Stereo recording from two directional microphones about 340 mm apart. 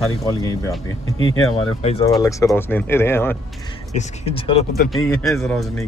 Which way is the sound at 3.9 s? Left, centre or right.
Centre.